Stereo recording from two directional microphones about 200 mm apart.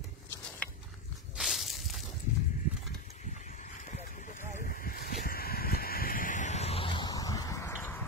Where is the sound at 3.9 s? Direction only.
40° left (ahead or behind); by 8.0 s 15° left (ahead or behind).